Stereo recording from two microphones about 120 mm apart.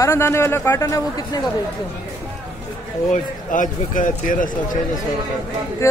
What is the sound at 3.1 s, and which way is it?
A man's voice, 90° left.